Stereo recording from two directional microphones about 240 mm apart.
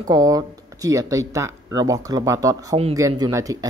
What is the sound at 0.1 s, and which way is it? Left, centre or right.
Speech, centre.